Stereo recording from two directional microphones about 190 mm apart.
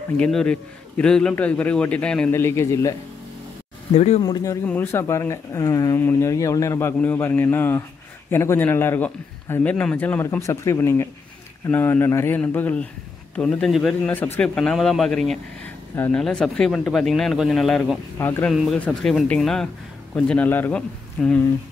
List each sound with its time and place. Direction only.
0.2 s speech: 5° left (ahead or behind)
3.9 s speech: 35° left (ahead or behind)
4.2 s speech: 20° left (ahead or behind)